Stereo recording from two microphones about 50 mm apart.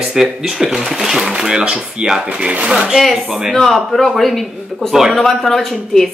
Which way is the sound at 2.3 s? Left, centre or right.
Right.